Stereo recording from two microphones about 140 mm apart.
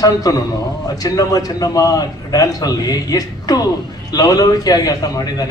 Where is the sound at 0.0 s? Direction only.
25° left (ahead or behind).